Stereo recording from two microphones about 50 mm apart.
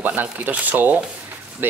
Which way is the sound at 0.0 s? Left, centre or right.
Right.